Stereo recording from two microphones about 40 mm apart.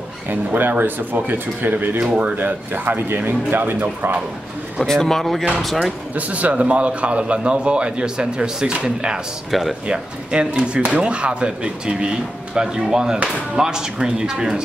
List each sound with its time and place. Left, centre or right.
0.3 s speech: right
2.0 s speech: right
2.3 s speech: right
4.8 s speech: centre
6.1 s a man's voice: right
9.5 s speech: centre
9.8 s a man's voice: right